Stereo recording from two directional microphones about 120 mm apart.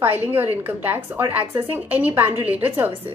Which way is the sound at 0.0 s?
15° right (ahead or behind).